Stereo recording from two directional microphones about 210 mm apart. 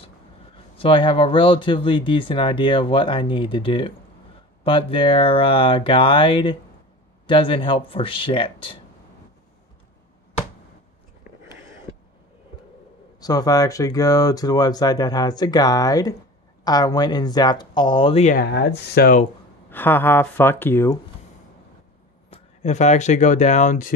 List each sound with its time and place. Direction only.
0.7 s speech: 25° left (ahead or behind)
13.2 s speech: 20° left (ahead or behind)
18.4 s speech: 55° left (ahead or behind)
19.7 s speech: 10° left (ahead or behind)
22.3 s speech: 30° left (ahead or behind)